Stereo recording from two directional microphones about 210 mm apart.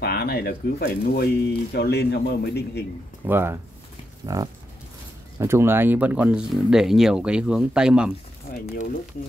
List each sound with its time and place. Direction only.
0.0 s speech: 50° left (ahead or behind)
3.3 s speech: 10° right (ahead or behind)
8.5 s speech: 40° left (ahead or behind)